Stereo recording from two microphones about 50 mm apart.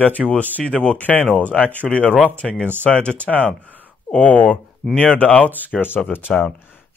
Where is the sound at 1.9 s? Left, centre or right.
Left.